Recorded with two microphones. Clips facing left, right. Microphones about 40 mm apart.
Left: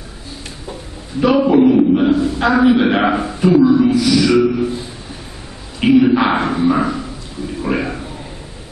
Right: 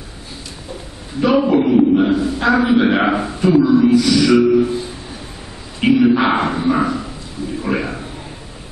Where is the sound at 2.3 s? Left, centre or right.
Centre.